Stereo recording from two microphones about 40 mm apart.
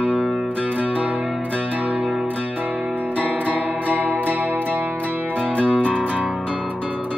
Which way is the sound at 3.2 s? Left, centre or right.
Right.